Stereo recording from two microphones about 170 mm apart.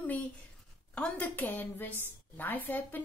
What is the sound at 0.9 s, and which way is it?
A woman's voice, 10° left (ahead or behind).